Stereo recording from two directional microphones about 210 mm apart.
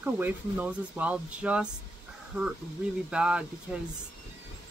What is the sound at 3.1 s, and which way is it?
Speech, 5° right (ahead or behind).